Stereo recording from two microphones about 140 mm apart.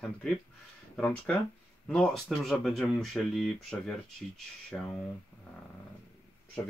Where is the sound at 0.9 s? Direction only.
5° left (ahead or behind).